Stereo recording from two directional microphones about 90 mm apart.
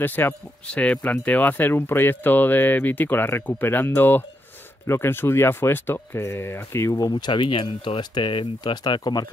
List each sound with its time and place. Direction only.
0.0 s speech: 20° left (ahead or behind)
7.0 s speech: 50° left (ahead or behind)